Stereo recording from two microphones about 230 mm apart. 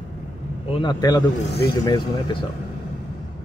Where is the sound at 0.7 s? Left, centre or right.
Centre.